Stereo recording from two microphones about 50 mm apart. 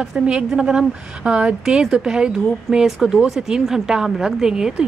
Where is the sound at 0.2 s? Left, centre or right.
Right.